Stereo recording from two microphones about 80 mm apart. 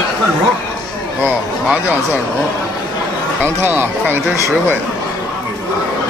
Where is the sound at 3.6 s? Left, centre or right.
Right.